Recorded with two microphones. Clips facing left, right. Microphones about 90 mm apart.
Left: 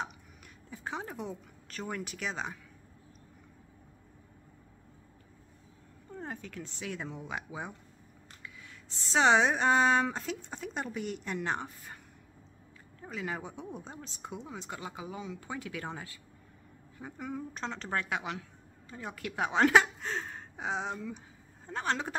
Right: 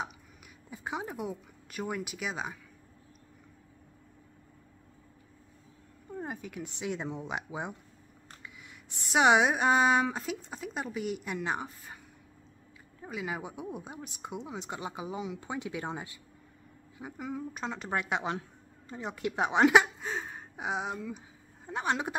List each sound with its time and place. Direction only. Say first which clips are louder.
0.7 s speech: right 2 dB; 10° right (ahead or behind)
6.0 s speech: right 3 dB; 10° right (ahead or behind)
13.0 s speech: right 1 dB; 10° right (ahead or behind)
17.0 s speech: right 2 dB; 10° right (ahead or behind)